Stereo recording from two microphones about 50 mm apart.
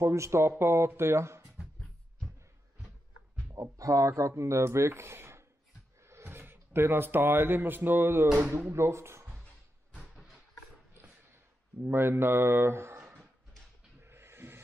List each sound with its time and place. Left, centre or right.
0.0 s speech: right
3.8 s speech: right
8.7 s speech: right
10.1 s a sound: centre
11.8 s speech: right
14.0 s a sound: right